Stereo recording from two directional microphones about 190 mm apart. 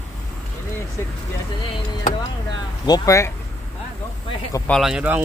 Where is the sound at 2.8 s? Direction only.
20° left (ahead or behind).